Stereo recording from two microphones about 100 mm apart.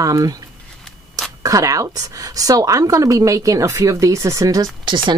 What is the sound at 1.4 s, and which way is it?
Speech, 35° right (ahead or behind).